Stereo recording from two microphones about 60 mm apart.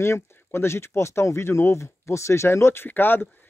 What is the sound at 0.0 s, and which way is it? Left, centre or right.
Speech, left.